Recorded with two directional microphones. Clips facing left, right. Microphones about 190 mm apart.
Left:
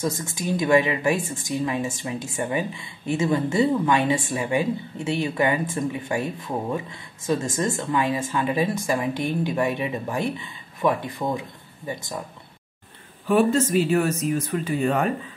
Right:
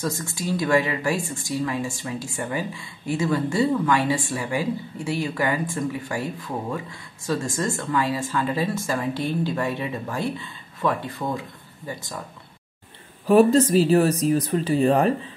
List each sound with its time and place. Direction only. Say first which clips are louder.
0.0 s speech: left 1 dB; 20° left (ahead or behind)
13.3 s speech: right 4 dB; 40° right (ahead or behind)